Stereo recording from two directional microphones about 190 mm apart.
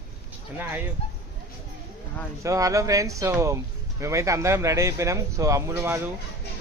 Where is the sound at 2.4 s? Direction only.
15° right (ahead or behind).